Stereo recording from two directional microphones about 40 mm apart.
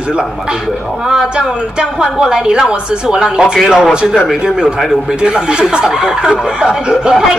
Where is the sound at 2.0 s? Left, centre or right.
Centre.